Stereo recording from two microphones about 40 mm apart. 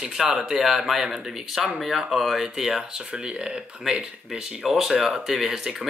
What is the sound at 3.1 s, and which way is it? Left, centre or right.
Speech, right.